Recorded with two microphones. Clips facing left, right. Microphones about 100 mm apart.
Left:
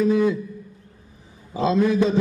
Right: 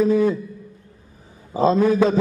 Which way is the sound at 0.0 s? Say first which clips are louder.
Right 2 dB; 40° right (ahead or behind).